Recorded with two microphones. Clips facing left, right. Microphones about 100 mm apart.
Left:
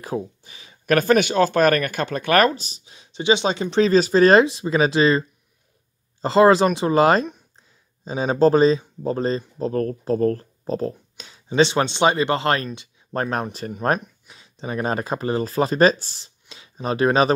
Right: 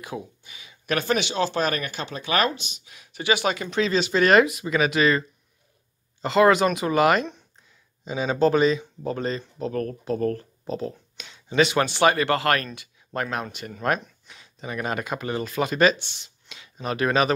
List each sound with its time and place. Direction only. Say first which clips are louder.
0.0 s speech: left 7 dB; 35° left (ahead or behind)
6.2 s speech: left 3 dB; 30° left (ahead or behind)